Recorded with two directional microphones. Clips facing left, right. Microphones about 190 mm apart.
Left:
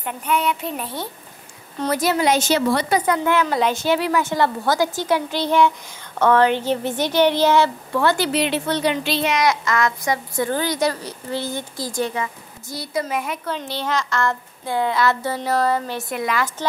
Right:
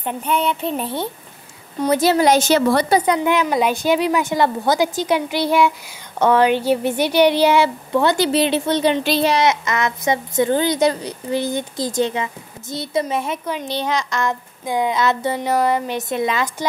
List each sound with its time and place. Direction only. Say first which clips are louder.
0.0 s a woman's voice: right 2 dB; 30° right (ahead or behind)
3.1 s speech: right 2 dB; 15° right (ahead or behind)
9.0 s a woman's voice: right 4 dB; 40° right (ahead or behind)
9.5 s a woman's voice: even; 20° right (ahead or behind)